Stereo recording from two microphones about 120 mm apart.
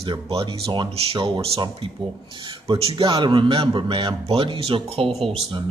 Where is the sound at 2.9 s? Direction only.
40° right (ahead or behind).